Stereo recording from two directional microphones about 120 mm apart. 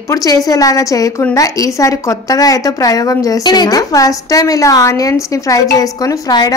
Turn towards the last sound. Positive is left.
turn(degrees=35)  # may be behind; listen again after turning